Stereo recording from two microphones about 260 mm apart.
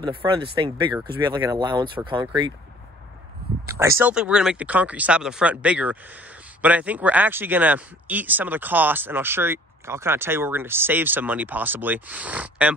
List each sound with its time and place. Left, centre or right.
0.0 s speech: centre
3.6 s speech: centre